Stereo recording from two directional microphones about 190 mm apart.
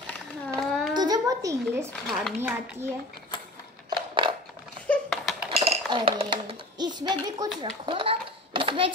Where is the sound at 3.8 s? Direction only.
25° right (ahead or behind).